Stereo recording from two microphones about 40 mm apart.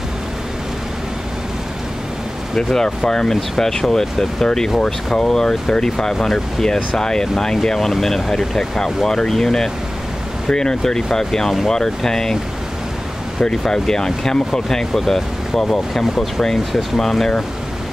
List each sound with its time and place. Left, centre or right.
2.5 s speech: centre
3.3 s speech: centre
13.4 s speech: centre